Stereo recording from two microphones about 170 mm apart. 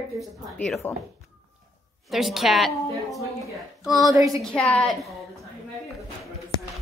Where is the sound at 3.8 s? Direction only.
Centre (ahead or behind).